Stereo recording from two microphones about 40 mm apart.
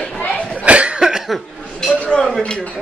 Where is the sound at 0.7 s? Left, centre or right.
Right.